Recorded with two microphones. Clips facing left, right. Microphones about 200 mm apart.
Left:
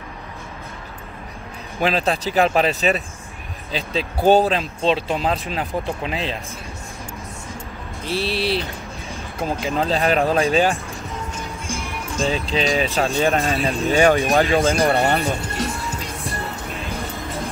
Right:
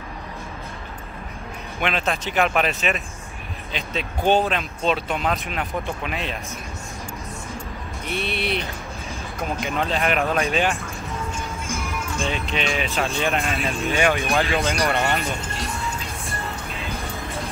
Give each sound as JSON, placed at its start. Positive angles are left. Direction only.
{"t": 1.8, "sound": "speech", "side_deg": 35}
{"t": 3.7, "sound": "speech", "side_deg": 35}
{"t": 8.0, "sound": "speech", "side_deg": 30}
{"t": 11.9, "sound": "speech", "side_deg": 35}
{"t": 14.4, "sound": "speech", "side_deg": 50}
{"t": 14.9, "sound": "speech", "side_deg": 30}